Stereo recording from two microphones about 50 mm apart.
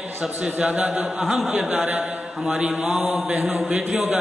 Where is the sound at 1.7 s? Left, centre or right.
Right.